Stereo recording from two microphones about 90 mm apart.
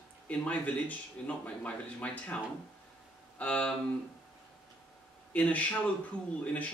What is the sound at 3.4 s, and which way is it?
Speech, 15° left (ahead or behind).